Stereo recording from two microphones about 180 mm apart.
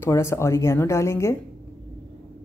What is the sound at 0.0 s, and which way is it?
Speech, 15° left (ahead or behind).